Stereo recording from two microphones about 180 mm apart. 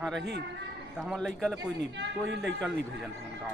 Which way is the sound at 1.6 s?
75° right (ahead or behind).